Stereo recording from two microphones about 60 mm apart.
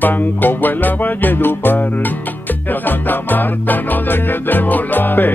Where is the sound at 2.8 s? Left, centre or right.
Left.